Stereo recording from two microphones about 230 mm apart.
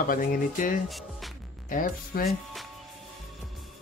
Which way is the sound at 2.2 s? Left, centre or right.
Centre.